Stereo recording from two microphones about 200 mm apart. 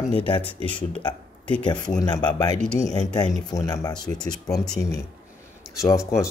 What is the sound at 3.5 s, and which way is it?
Speech, 15° left (ahead or behind).